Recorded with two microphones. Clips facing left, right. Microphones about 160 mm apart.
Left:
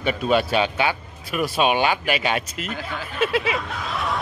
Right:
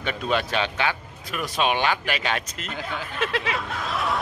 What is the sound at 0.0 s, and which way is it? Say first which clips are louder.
Speech: left 5 dB; 10° left (ahead or behind).